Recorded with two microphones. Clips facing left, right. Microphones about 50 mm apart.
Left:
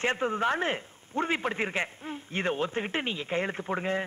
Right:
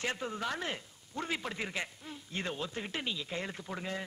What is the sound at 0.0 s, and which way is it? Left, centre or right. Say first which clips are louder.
A man's voice: left 9 dB; left.